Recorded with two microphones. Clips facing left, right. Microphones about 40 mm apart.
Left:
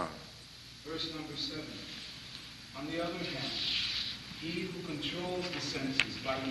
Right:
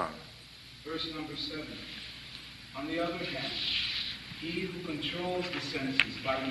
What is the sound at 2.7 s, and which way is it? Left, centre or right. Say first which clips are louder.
A man's voice: right 3 dB; centre.